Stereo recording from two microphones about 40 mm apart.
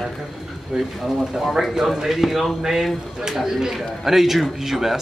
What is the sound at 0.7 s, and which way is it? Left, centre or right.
Speech, centre.